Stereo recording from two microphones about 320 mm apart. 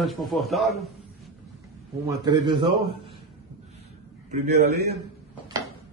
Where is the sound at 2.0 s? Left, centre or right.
Centre.